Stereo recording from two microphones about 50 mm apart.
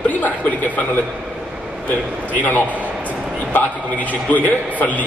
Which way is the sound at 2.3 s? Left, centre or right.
Left.